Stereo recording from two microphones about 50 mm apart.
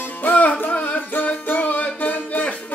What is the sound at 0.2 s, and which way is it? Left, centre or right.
Music, left.